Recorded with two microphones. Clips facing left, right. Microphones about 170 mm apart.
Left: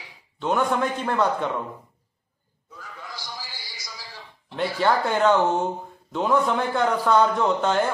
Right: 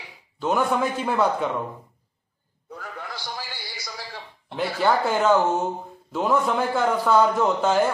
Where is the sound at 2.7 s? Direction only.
60° right (ahead or behind).